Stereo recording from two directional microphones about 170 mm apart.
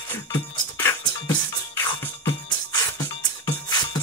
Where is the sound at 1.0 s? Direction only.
25° left (ahead or behind).